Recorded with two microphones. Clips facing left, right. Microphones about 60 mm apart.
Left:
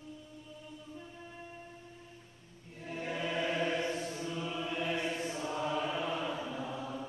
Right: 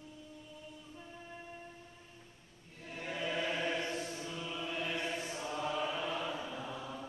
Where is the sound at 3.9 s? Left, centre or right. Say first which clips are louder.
Left 3 dB; centre.